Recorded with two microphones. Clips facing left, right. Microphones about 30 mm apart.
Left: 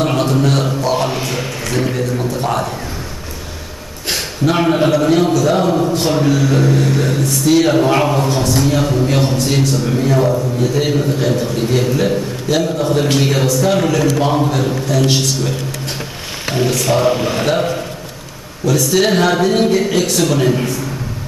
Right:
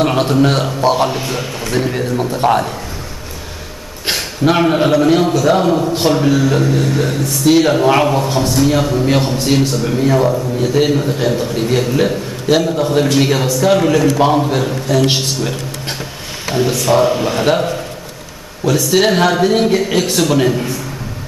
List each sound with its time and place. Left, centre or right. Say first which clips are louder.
0.0 s a man's voice: right 2 dB; centre
0.9 s speech: right 1 dB; centre
2.2 s a man's voice: right 8 dB; right
4.1 s a man's voice: right 2 dB; centre
16.5 s a man's voice: right 2 dB; centre
18.8 s a man's voice: right 1 dB; centre